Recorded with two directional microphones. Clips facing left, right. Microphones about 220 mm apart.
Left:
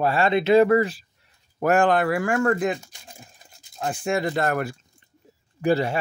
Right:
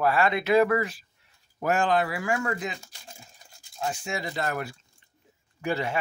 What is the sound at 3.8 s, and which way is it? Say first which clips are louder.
Speech: left 7 dB; 55° left (ahead or behind).